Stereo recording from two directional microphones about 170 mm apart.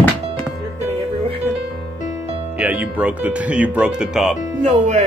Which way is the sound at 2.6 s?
10° right (ahead or behind).